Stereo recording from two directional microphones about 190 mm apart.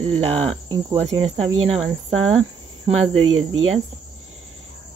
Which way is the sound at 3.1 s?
90° right.